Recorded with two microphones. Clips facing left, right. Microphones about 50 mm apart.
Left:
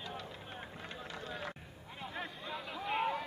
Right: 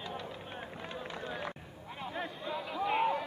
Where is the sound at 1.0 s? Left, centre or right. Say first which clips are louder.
Right 4 dB; right.